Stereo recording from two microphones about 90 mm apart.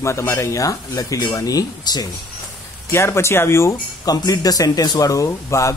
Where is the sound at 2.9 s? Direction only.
30° left (ahead or behind).